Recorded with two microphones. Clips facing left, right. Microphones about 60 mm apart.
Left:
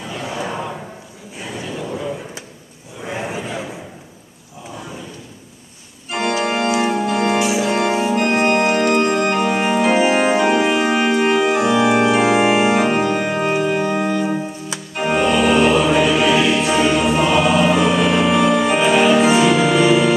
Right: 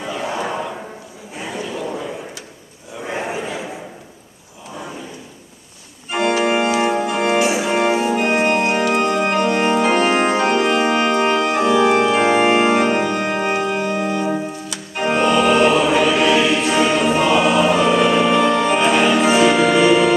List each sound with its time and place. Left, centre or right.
0.2 s a sound: centre
3.1 s a sound: centre
6.0 s organ: centre
7.3 s organ: right
7.6 s organ: centre
15.0 s choir: centre